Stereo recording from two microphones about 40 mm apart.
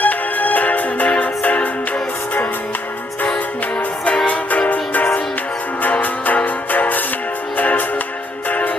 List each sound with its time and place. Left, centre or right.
0.0 s music: left
4.3 s music: left